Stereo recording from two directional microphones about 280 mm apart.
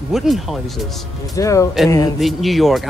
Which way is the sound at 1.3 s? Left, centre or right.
Centre.